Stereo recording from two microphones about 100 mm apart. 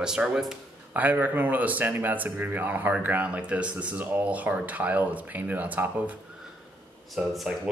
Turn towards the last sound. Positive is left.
turn(degrees=0)  # may be behind; listen again after turning